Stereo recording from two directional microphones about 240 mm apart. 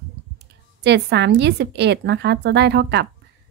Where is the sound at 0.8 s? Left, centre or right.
Right.